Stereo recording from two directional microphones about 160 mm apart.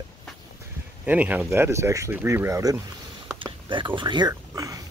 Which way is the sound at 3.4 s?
30° right (ahead or behind).